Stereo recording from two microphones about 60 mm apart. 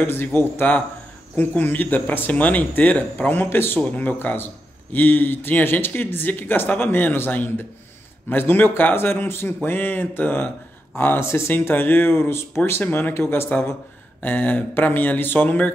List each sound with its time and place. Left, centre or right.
0.0 s speech: left
11.5 s speech: left
14.2 s speech: left